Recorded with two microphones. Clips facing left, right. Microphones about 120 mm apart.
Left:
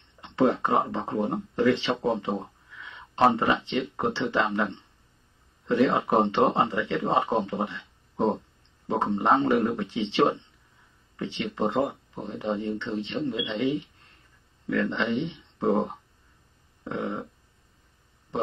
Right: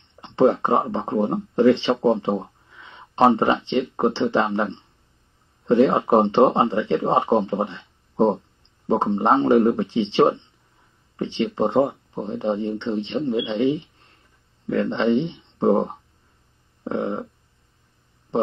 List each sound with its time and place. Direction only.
0.1 s speech: 30° right (ahead or behind)
18.3 s speech: 30° right (ahead or behind)